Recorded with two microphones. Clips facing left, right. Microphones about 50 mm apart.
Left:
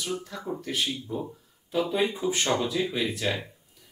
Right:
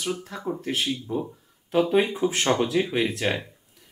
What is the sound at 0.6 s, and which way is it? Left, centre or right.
Speech, right.